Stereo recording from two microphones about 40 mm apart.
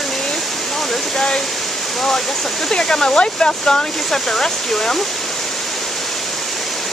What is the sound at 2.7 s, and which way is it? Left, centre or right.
Speech, left.